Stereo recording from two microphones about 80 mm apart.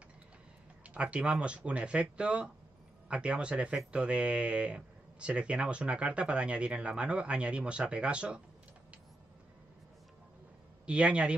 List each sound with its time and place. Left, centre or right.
0.8 s speech: centre
10.9 s speech: centre